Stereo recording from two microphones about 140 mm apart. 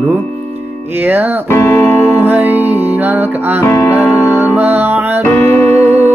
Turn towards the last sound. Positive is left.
turn(degrees=15)  # may be behind; listen again after turning